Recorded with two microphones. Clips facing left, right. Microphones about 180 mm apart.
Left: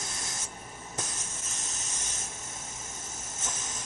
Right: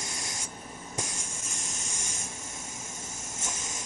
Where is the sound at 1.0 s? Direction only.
10° right (ahead or behind).